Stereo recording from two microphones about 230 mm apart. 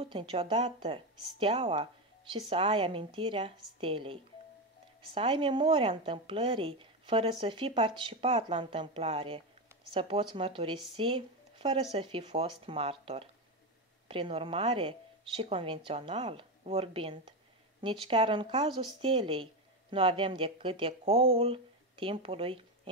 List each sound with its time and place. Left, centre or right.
0.0 s speech: right